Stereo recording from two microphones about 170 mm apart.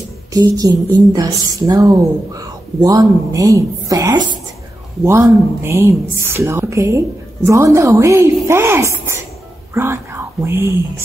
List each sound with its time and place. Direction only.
0.3 s speech: 20° right (ahead or behind)